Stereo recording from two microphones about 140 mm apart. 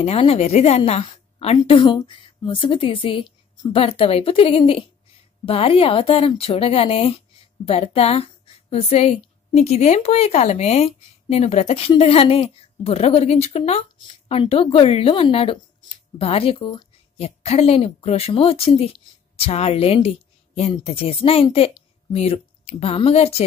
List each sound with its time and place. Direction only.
0.0 s a woman's voice: 45° left (ahead or behind)